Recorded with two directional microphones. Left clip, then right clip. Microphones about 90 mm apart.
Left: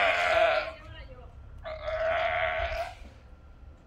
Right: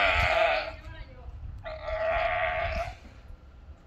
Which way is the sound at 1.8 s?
20° right (ahead or behind).